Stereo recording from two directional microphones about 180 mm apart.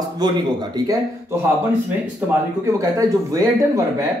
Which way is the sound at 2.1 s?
15° right (ahead or behind).